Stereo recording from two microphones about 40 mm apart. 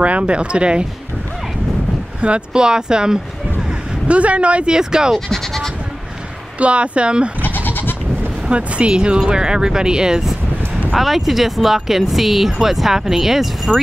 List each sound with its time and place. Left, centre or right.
0.2 s speech: right
2.2 s speech: right
4.1 s speech: right
4.7 s speech: centre
5.3 s bleat: centre
6.6 s speech: right
7.4 s goat: left
8.5 s speech: right
10.9 s speech: centre
13.7 s speech: centre